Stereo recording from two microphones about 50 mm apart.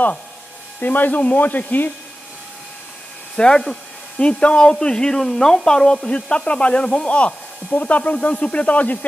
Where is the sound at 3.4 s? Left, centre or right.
Centre.